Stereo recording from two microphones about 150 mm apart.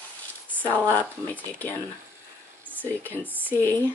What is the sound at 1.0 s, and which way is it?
Speech, 10° left (ahead or behind).